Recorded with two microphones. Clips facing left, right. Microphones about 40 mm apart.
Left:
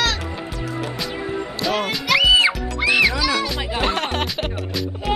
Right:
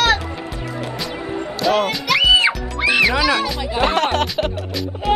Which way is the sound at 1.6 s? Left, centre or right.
Centre.